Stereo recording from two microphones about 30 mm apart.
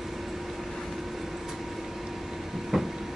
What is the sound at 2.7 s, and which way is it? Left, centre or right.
Vehicle, centre.